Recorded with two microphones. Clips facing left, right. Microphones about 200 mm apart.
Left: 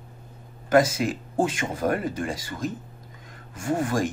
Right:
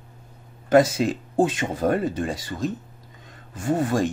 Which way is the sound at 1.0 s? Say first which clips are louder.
Right 3 dB; 25° right (ahead or behind).